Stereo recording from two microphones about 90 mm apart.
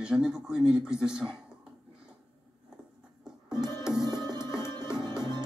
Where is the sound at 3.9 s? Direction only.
50° right (ahead or behind).